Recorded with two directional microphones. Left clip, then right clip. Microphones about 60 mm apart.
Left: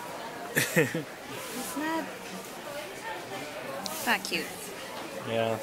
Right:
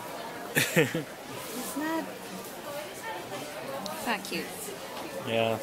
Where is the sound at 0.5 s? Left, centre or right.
Centre.